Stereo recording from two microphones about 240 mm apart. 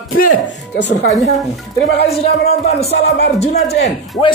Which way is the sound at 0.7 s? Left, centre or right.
Left.